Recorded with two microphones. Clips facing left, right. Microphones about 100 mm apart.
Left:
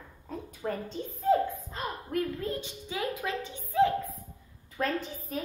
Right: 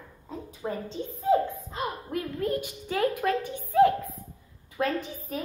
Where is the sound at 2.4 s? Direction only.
20° left (ahead or behind).